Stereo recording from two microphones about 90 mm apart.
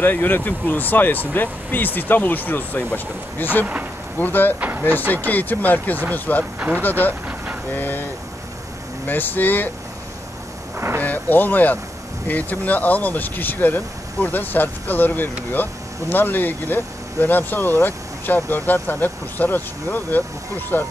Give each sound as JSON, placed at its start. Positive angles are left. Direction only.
{"t": 0.0, "sound": "speech", "side_deg": 20}
{"t": 4.6, "sound": "speech", "side_deg": -20}
{"t": 4.8, "sound": "speech", "side_deg": 20}
{"t": 7.7, "sound": "a sound", "side_deg": 20}
{"t": 9.0, "sound": "speech", "side_deg": 20}
{"t": 11.0, "sound": "speech", "side_deg": 20}